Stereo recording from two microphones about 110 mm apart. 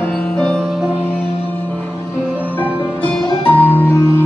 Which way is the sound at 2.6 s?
10° left (ahead or behind).